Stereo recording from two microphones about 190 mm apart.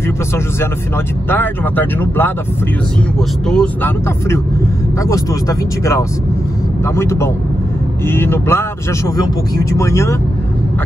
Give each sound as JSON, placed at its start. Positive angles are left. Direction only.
{"t": 1.3, "sound": "speech", "side_deg": 10}